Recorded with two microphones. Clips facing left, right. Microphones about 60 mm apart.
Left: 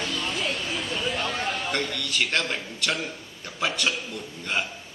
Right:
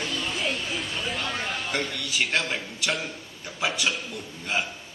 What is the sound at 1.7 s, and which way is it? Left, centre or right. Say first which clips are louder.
A man's voice: left 1 dB; centre.